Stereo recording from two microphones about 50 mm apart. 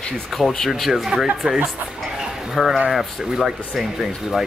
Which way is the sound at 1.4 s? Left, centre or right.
Right.